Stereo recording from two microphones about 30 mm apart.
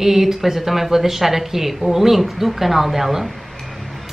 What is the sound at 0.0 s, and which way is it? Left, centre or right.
Speech, centre.